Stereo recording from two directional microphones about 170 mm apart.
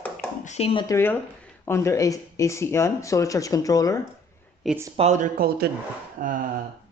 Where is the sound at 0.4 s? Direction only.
40° left (ahead or behind).